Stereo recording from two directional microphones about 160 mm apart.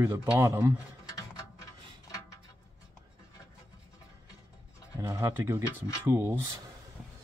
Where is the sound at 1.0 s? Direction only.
20° left (ahead or behind).